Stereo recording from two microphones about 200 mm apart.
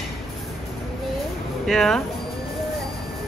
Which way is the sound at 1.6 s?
Centre (ahead or behind).